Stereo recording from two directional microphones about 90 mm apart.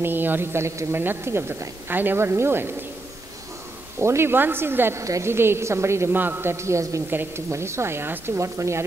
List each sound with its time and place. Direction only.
0.0 s a woman's voice: 20° right (ahead or behind)
4.0 s a woman's voice: 30° right (ahead or behind)